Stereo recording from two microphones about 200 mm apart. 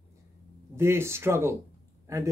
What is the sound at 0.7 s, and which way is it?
A man's voice, 10° right (ahead or behind).